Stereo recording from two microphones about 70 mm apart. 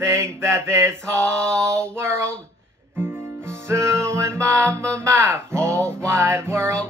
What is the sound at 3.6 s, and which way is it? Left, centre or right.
Music, right.